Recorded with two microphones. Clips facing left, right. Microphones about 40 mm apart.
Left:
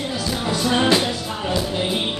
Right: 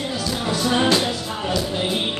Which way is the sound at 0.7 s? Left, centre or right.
Centre.